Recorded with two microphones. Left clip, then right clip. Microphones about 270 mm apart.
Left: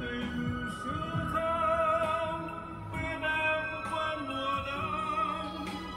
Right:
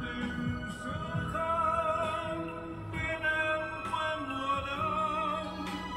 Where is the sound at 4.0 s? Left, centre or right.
Right.